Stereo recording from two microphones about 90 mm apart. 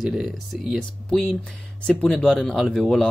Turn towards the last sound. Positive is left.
turn(degrees=5)  # may be behind; listen again after turning